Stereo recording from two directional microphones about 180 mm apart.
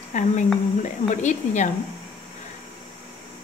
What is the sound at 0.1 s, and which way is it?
A woman's voice, 45° left (ahead or behind).